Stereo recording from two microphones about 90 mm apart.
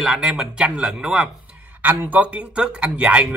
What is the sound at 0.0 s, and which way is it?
Speech, 5° right (ahead or behind).